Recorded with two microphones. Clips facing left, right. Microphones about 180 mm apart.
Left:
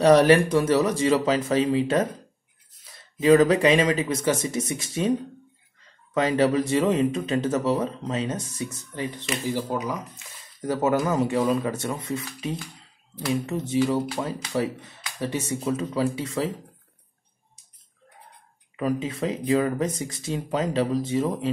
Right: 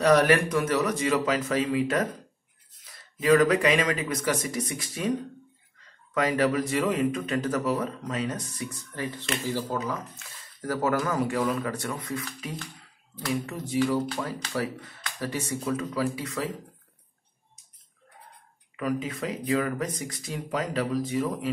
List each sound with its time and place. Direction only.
0.0 s speech: 30° left (ahead or behind)
6.1 s speech: 25° left (ahead or behind)
13.3 s speech: 25° left (ahead or behind)
18.8 s speech: 25° left (ahead or behind)